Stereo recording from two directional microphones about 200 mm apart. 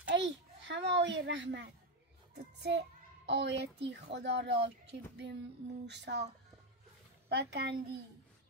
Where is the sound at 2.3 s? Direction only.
60° right (ahead or behind).